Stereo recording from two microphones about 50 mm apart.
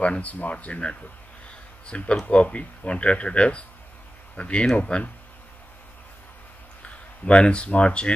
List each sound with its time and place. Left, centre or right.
0.0 s speech: left
6.8 s speech: left